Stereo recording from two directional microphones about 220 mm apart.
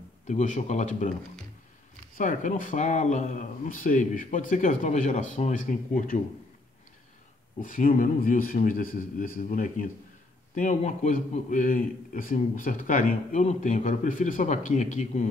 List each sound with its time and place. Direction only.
0.3 s a man's voice: 35° left (ahead or behind)
2.1 s a man's voice: 35° left (ahead or behind)
7.6 s a man's voice: 40° left (ahead or behind)